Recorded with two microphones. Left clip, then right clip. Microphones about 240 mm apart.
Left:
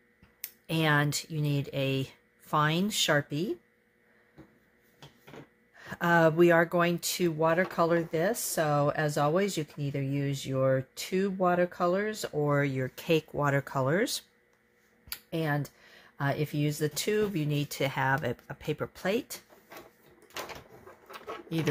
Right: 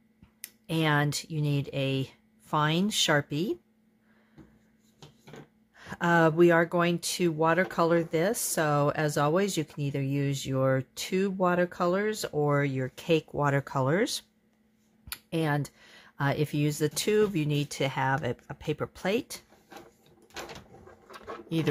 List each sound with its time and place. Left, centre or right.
0.4 s speech: centre
5.8 s speech: centre
21.1 s a sound: centre